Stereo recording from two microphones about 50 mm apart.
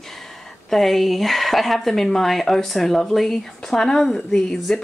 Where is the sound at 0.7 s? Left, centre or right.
Centre.